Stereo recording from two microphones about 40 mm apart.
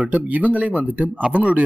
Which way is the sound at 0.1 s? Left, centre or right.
Right.